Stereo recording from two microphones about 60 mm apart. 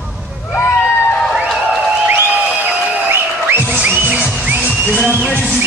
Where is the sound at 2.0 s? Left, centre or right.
Right.